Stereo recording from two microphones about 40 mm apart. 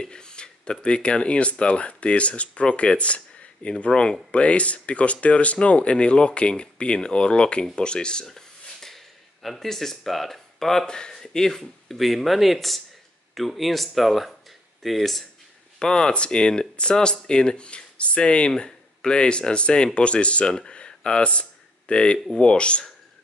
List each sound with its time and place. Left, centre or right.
0.0 s speech: left
3.9 s speech: left
4.4 s speech: left
8.3 s a sound: centre
10.9 s speech: centre
15.8 s speech: centre